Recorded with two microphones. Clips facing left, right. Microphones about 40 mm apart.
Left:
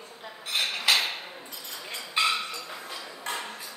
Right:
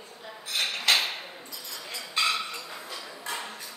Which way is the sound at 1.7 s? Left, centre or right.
Left.